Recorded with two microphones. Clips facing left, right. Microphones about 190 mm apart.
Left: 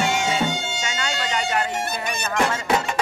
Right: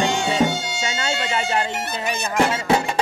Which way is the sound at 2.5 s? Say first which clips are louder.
Right 3 dB; 30° right (ahead or behind).